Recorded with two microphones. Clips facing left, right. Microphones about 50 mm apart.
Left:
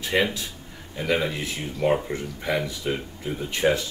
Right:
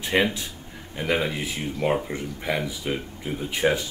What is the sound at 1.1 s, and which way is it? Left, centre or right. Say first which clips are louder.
Speech: even; centre.